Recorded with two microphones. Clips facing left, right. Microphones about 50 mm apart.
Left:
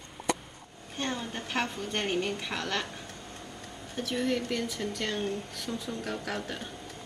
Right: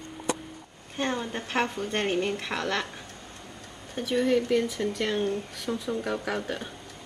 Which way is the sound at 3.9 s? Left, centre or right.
Centre.